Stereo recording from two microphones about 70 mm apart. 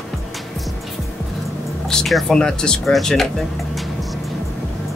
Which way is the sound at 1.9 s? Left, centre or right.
Centre.